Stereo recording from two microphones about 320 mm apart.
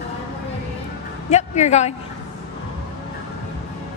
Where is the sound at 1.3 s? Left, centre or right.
Left.